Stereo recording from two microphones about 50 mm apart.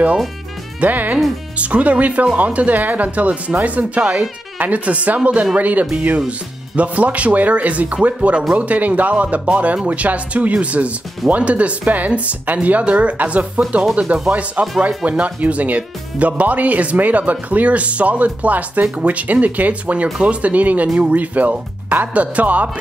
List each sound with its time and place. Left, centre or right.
0.7 s speech: right